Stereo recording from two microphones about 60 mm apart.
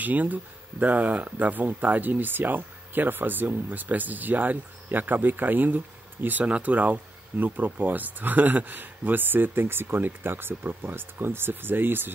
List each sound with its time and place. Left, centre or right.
0.0 s speech: right